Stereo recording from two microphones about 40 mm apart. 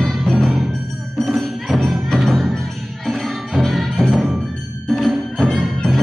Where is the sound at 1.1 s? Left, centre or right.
Centre.